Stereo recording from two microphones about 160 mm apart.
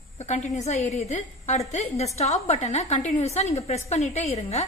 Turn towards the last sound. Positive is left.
turn(degrees=45)  # may be behind; listen again after turning